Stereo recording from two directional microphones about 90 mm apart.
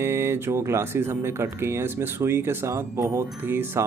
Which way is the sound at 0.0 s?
30° right (ahead or behind).